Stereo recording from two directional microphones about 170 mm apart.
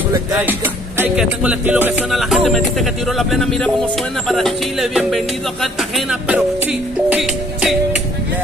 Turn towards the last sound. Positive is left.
turn(degrees=-5)  # may be behind; listen again after turning